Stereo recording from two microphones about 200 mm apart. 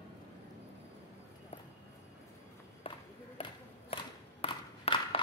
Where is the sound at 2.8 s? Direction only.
30° left (ahead or behind).